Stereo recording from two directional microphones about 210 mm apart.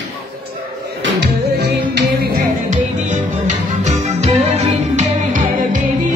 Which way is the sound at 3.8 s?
30° right (ahead or behind).